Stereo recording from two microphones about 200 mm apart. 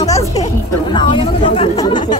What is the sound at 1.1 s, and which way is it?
Speech, 25° left (ahead or behind).